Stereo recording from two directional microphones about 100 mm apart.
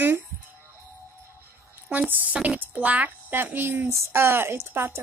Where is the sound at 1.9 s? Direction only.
15° right (ahead or behind).